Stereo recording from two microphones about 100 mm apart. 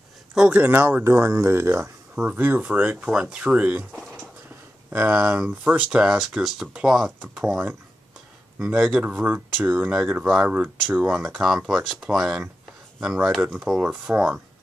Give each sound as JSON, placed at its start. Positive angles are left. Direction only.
{"t": 0.3, "sound": "speech", "side_deg": -10}
{"t": 3.9, "sound": "a sound", "side_deg": 5}
{"t": 4.9, "sound": "speech", "side_deg": -20}
{"t": 7.1, "sound": "speech", "side_deg": -15}
{"t": 8.5, "sound": "speech", "side_deg": -5}